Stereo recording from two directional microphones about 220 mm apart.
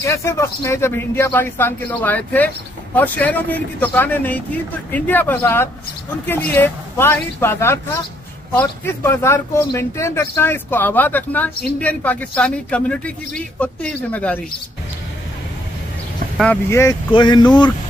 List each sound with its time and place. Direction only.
0.0 s speech: 15° left (ahead or behind)
16.3 s speech: 10° left (ahead or behind)